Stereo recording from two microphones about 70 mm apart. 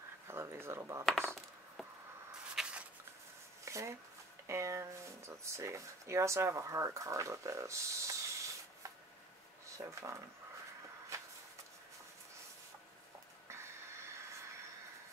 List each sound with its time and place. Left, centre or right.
0.3 s speech: right
1.0 s coin: centre
2.5 s a sound: centre
3.6 s a sound: right
4.5 s speech: right
9.8 s speech: right
11.1 s vehicle: right
13.5 s printer: right